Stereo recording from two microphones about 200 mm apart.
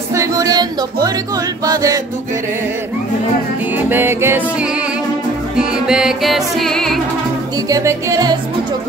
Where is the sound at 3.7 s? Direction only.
10° right (ahead or behind).